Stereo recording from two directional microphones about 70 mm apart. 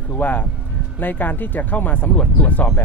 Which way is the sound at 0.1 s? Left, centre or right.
Left.